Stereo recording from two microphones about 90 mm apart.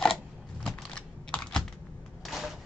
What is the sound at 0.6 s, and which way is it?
Computer keyboard, 10° left (ahead or behind).